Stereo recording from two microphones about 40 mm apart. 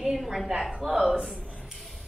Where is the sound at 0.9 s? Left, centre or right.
Centre.